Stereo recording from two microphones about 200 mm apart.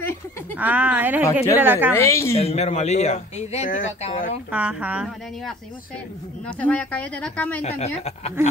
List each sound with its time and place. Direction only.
0.6 s speech: 10° right (ahead or behind)
2.0 s speech: 15° left (ahead or behind)
2.3 s speech: 30° left (ahead or behind)
4.5 s speech: 5° right (ahead or behind)
6.4 s speech: 5° left (ahead or behind)
7.6 s speech: 30° left (ahead or behind)